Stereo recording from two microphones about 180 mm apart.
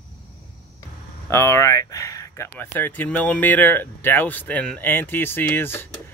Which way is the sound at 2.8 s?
10° left (ahead or behind).